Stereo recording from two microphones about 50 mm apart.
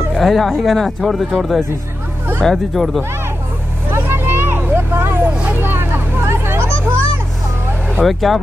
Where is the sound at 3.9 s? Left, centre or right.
Right.